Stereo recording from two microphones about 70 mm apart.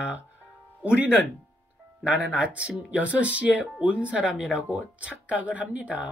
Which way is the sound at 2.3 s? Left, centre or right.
Centre.